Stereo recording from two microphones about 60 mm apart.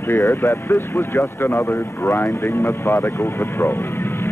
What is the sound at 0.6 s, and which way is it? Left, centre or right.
Speech, left.